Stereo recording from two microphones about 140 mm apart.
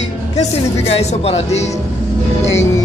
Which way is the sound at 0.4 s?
45° left (ahead or behind).